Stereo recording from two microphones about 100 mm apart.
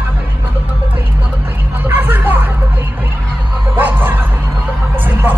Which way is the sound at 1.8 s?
20° right (ahead or behind).